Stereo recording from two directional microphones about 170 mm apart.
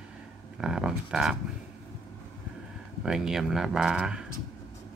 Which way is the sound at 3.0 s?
5° right (ahead or behind).